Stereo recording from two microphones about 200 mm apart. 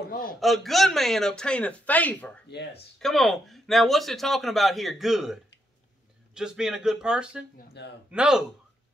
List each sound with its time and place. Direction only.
0.1 s a sound: 45° left (ahead or behind)
0.4 s speech: centre (ahead or behind)
2.4 s speech: 60° left (ahead or behind)
3.0 s speech: centre (ahead or behind)
7.5 s a man's voice: 55° left (ahead or behind)
8.1 s speech: 5° right (ahead or behind)